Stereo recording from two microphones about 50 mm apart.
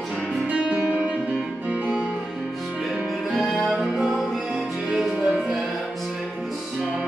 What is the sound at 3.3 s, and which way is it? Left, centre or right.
Music, centre.